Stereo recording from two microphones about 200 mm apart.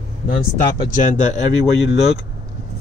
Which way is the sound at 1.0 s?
35° left (ahead or behind).